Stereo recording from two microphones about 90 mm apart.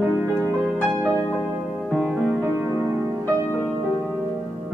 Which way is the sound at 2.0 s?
15° right (ahead or behind).